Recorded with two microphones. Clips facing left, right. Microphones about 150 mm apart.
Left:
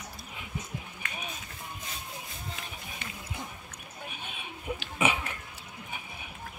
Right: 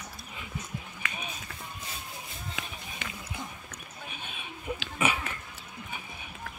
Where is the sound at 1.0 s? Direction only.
90° right.